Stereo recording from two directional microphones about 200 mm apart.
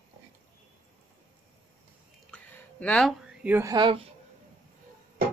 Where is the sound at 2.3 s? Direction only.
5° left (ahead or behind).